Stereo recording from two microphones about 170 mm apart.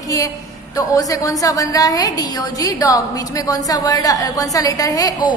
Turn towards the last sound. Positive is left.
turn(degrees=20)  # may be behind; listen again after turning